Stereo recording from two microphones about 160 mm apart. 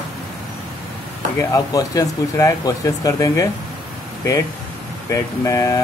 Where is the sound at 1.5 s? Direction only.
20° left (ahead or behind).